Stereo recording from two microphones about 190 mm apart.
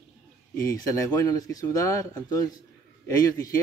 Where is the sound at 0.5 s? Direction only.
15° left (ahead or behind).